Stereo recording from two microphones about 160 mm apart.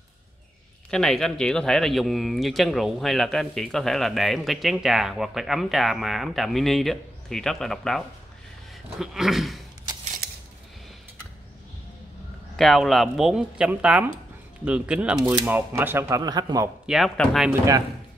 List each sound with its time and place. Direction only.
0.8 s speech: 5° left (ahead or behind)
9.0 s speech: centre (ahead or behind)
12.5 s speech: centre (ahead or behind); by 16.7 s 25° right (ahead or behind)
16.8 s speech: centre (ahead or behind)